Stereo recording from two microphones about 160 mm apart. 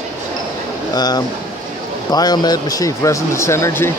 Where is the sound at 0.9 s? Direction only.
25° left (ahead or behind).